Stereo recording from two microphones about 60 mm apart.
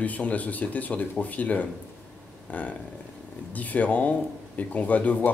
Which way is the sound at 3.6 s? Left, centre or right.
Left.